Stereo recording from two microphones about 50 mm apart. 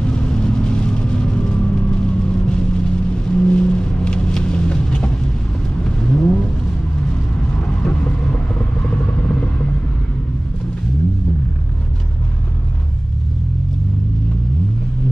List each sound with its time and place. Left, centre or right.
0.0 s vehicle: centre
7.6 s vehicle: centre